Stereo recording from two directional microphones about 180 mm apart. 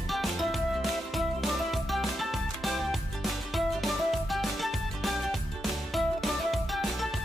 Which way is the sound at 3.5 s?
Centre (ahead or behind).